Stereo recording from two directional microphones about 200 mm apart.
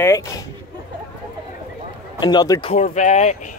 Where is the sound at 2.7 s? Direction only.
35° left (ahead or behind).